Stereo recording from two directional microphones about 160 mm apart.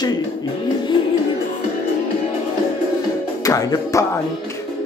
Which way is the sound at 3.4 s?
20° left (ahead or behind).